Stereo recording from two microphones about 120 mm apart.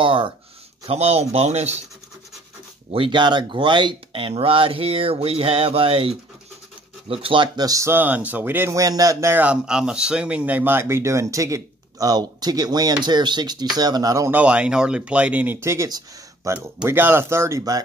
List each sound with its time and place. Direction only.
0.0 s speech: 45° right (ahead or behind)
0.8 s speech: 60° right (ahead or behind)
2.9 s speech: 45° right (ahead or behind)
14.3 s speech: 10° right (ahead or behind); by 17.8 s 30° right (ahead or behind)